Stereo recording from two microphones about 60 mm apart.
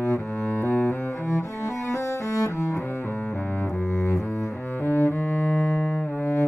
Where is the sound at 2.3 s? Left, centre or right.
Left.